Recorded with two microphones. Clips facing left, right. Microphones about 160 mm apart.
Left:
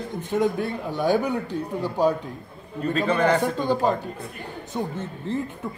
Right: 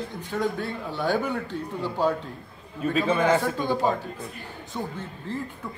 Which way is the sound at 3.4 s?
15° left (ahead or behind).